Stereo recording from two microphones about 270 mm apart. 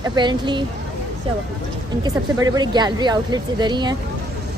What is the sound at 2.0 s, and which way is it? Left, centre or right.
Speech, centre.